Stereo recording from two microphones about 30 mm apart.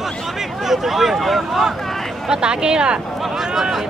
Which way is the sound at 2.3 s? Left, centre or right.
Right.